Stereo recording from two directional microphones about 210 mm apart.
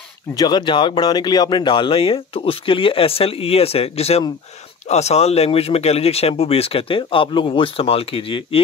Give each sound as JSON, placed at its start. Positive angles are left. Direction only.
{"t": 0.4, "sound": "speech", "side_deg": 20}